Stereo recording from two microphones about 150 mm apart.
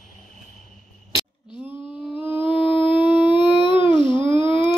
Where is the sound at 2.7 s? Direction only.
35° left (ahead or behind).